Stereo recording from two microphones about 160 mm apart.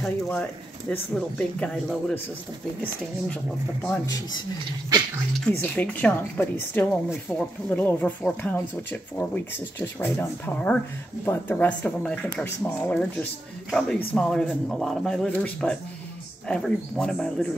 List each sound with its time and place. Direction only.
0.0 s speech: 5° left (ahead or behind)
3.8 s speech: 15° left (ahead or behind)
5.5 s speech: 10° left (ahead or behind)